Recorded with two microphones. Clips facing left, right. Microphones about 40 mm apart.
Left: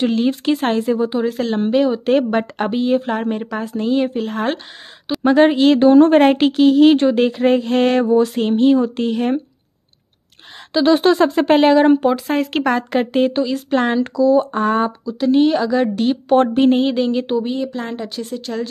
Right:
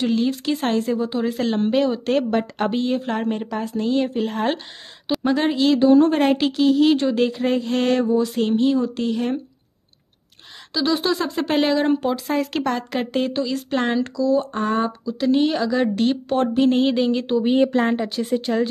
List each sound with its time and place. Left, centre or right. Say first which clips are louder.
0.0 s speech: left 4 dB; left
1.2 s a woman's voice: left 2 dB; centre
4.2 s a woman's voice: left 1 dB; centre
5.2 s speech: left 8 dB; left
5.8 s speech: left 5 dB; left
10.7 s speech: left 8 dB; left
11.5 s speech: left 6 dB; left; by 14.0 s centre
14.0 s speech: left 6 dB; left
16.3 s speech: left 5 dB; left
16.7 s a woman's voice: left 2 dB; centre